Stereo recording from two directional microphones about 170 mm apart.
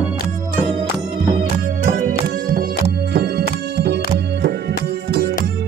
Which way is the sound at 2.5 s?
65° right (ahead or behind).